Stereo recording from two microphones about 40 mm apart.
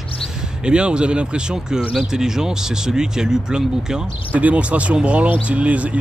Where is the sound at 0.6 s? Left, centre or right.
Right.